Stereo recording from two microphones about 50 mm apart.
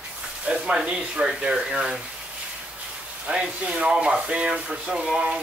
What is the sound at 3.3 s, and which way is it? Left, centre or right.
Speech, right.